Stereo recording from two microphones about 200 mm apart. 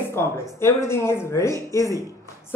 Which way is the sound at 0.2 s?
15° left (ahead or behind).